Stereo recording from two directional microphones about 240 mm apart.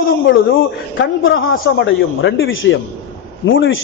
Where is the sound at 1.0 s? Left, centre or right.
Left.